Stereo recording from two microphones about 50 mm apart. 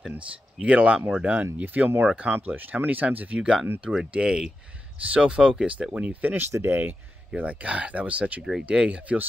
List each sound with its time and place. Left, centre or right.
0.6 s speech: right
2.0 s speech: right
2.3 s speech: right
3.3 s speech: centre
6.7 s speech: right
7.3 s speech: right